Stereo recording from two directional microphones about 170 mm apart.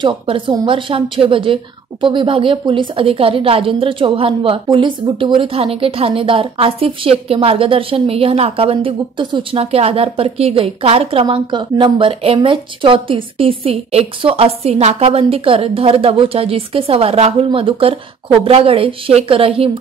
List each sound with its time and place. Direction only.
0.0 s a woman's voice: 25° right (ahead or behind)